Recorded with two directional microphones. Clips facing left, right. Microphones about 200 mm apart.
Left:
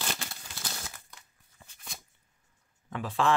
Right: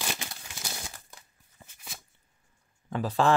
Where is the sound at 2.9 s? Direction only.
40° right (ahead or behind).